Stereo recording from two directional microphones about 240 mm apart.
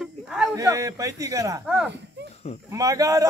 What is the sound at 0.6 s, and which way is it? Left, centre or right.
A man's voice, centre.